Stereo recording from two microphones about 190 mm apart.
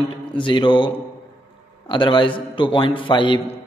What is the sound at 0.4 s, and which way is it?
A man's voice, 25° left (ahead or behind).